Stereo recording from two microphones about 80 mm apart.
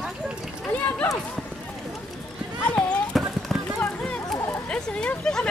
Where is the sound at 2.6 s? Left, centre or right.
Centre.